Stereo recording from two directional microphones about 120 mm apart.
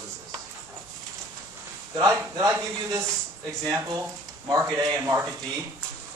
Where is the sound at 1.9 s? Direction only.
30° right (ahead or behind).